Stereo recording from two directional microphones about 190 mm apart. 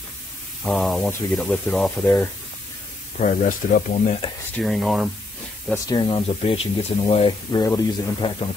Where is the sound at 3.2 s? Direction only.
40° left (ahead or behind).